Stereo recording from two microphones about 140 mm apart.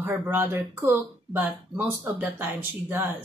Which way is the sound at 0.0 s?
15° right (ahead or behind).